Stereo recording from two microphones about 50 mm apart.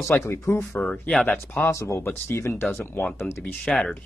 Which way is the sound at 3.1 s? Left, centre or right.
Left.